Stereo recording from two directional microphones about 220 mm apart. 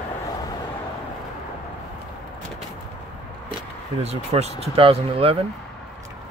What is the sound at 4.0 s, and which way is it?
Speech, 30° right (ahead or behind).